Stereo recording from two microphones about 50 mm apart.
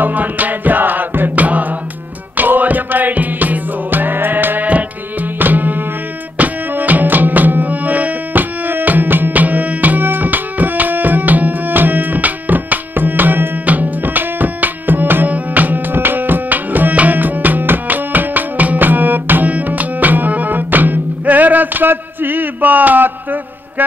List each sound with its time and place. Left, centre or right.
0.0 s music: right